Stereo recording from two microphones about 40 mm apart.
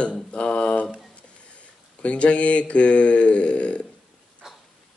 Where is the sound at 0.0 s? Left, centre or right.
Left.